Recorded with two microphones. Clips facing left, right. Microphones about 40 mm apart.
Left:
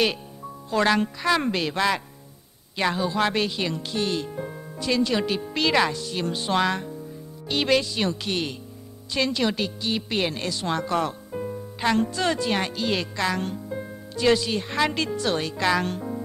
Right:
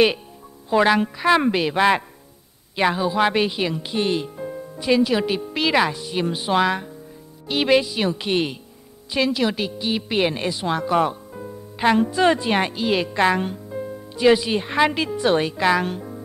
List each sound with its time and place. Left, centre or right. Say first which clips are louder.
0.7 s speech: right 4 dB; centre
9.1 s speech: right 3 dB; centre
12.0 s speech: right 6 dB; centre
13.1 s speech: right 7 dB; right